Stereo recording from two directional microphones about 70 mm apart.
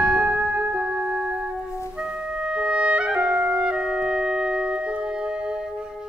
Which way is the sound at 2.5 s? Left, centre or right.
Centre.